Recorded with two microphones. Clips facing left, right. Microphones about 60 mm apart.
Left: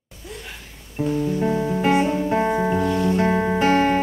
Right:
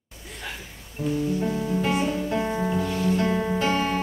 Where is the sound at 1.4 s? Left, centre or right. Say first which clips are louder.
Left 5 dB; left.